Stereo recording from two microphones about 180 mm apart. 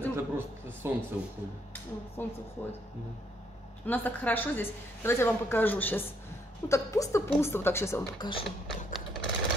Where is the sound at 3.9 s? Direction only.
10° left (ahead or behind).